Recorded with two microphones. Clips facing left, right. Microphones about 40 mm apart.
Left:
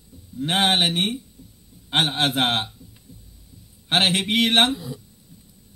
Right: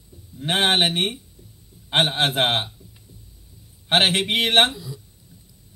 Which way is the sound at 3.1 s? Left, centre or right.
Right.